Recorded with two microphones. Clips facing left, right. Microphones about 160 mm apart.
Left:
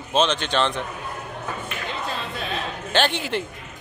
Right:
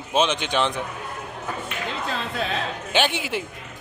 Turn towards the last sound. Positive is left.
turn(degrees=-10)  # may be behind; listen again after turning